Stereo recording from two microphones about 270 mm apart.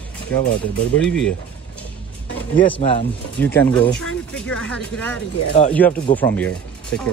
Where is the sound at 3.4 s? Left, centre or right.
Centre.